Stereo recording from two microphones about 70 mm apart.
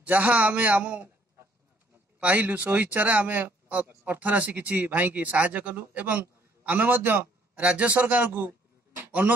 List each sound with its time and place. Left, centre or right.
0.0 s speech: right
2.1 s speech: right
8.5 s a sound: right